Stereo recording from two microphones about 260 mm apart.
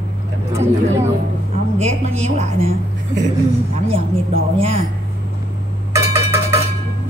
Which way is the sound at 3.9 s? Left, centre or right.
Right.